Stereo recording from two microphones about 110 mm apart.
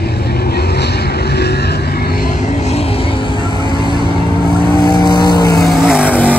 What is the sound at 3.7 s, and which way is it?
Vehicle, 45° right (ahead or behind).